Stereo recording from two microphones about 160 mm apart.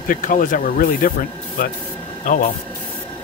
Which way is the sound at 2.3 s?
55° left (ahead or behind).